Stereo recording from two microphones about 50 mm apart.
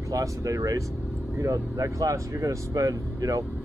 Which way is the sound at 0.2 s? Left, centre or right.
Right.